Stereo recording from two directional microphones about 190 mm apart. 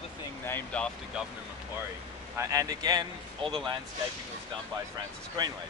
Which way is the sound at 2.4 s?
20° right (ahead or behind).